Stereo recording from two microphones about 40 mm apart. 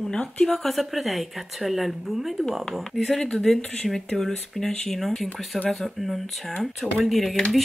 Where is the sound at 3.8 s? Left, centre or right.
Centre.